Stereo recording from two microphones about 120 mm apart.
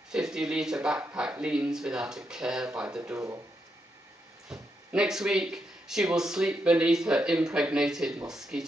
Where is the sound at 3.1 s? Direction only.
25° right (ahead or behind).